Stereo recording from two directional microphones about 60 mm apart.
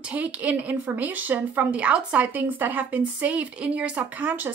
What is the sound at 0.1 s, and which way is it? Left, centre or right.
Speech, right.